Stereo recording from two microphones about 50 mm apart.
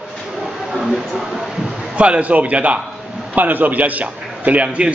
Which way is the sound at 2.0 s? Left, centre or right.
Right.